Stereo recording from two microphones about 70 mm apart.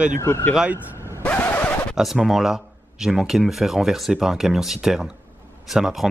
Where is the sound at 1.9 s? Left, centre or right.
Centre.